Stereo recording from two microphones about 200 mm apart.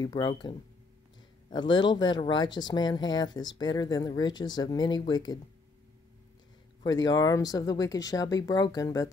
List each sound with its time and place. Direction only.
0.0 s speech: 20° left (ahead or behind)
6.8 s speech: 20° left (ahead or behind)